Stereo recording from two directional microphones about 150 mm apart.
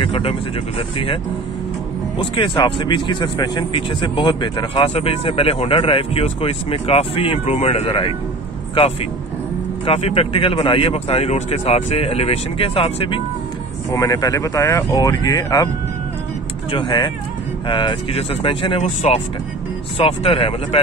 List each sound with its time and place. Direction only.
0.0 s speech: 40° left (ahead or behind)
9.8 s speech: 40° left (ahead or behind)
13.9 s speech: 25° left (ahead or behind)
16.7 s speech: 30° left (ahead or behind)